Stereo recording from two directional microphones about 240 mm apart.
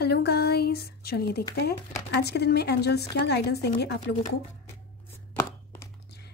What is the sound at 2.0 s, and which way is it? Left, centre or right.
A woman's voice, left.